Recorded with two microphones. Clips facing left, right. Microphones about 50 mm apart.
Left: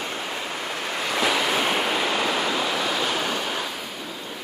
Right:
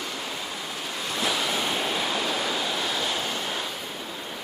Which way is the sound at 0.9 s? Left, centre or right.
Left.